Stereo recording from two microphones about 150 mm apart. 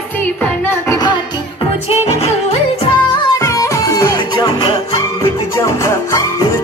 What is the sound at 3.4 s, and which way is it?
Music, 20° left (ahead or behind).